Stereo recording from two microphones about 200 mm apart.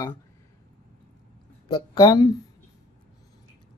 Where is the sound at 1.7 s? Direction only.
20° left (ahead or behind).